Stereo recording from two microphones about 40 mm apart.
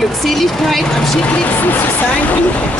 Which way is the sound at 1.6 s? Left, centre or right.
Left.